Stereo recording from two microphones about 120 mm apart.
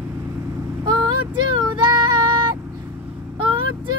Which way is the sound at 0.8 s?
35° right (ahead or behind).